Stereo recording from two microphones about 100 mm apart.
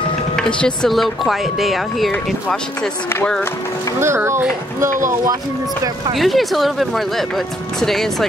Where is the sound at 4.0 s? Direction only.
25° right (ahead or behind).